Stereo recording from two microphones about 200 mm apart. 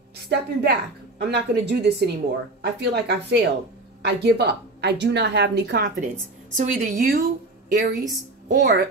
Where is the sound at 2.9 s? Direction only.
55° right (ahead or behind).